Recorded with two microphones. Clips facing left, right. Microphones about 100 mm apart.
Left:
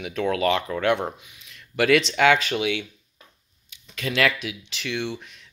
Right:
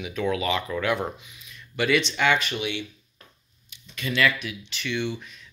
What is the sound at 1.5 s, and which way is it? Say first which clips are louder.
Speech: left 4 dB; 85° left.